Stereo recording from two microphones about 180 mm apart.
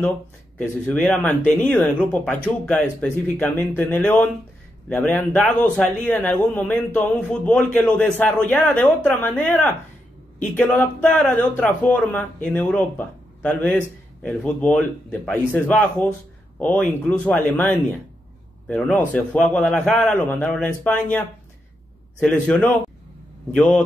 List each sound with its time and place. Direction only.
0.6 s speech: 5° left (ahead or behind)